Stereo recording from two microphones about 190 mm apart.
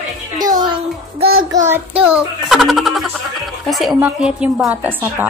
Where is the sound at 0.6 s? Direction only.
25° right (ahead or behind).